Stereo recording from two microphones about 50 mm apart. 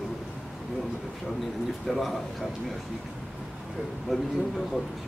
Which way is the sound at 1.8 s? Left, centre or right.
Centre.